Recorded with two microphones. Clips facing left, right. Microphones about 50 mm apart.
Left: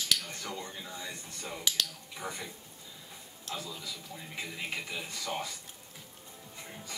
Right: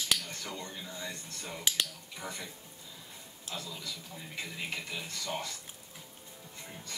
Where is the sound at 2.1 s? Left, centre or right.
Centre.